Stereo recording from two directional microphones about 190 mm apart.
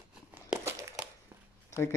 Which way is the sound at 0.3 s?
10° right (ahead or behind).